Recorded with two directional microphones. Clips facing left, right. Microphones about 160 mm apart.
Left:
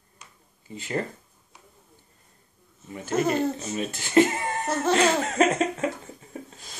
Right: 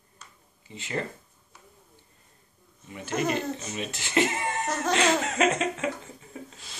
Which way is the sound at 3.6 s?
40° left (ahead or behind).